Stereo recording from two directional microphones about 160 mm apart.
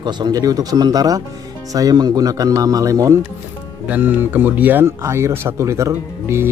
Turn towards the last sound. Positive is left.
turn(degrees=-15)  # may be behind; listen again after turning